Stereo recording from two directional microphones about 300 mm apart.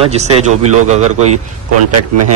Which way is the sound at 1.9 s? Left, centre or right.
Right.